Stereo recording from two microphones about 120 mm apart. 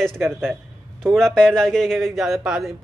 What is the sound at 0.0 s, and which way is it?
A woman's voice, centre (ahead or behind).